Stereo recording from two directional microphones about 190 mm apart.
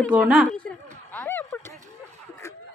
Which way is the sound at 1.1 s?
10° left (ahead or behind).